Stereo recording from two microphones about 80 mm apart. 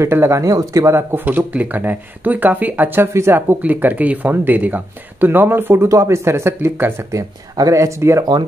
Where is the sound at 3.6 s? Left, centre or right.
Right.